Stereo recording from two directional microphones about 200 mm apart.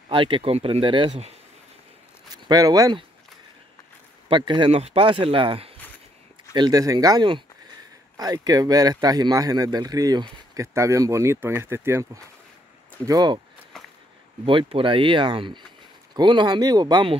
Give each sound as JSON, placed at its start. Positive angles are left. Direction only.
{"t": 0.1, "sound": "speech", "side_deg": -25}
{"t": 2.3, "sound": "speech", "side_deg": -20}
{"t": 4.3, "sound": "speech", "side_deg": -25}
{"t": 14.4, "sound": "speech", "side_deg": -25}